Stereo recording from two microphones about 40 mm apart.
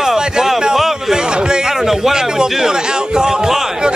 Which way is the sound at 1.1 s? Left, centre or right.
Centre.